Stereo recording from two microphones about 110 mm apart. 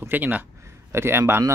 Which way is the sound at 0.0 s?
15° right (ahead or behind).